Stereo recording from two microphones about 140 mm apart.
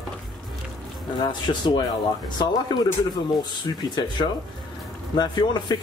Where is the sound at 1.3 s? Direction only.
30° left (ahead or behind).